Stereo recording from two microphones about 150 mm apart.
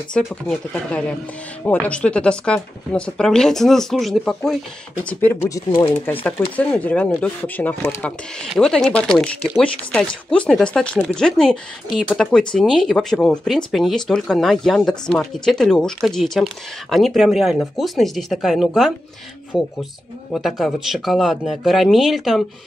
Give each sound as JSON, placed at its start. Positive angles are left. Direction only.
{"t": 0.1, "sound": "speech", "side_deg": 5}
{"t": 5.2, "sound": "speech", "side_deg": 15}
{"t": 6.2, "sound": "speech", "side_deg": 10}